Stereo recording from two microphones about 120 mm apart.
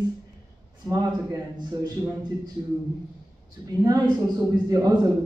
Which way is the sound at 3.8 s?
30° right (ahead or behind).